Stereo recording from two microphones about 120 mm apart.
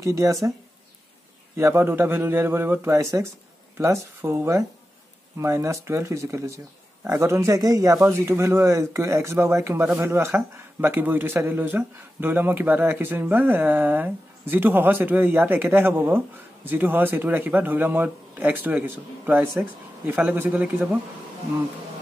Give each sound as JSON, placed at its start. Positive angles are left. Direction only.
{"t": 0.0, "sound": "speech", "side_deg": -30}
{"t": 1.6, "sound": "speech", "side_deg": -20}